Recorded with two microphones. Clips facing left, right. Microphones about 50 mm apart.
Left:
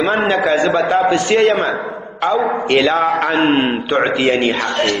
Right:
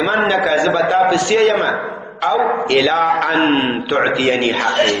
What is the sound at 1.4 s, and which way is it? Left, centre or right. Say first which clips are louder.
A man's voice: even; centre.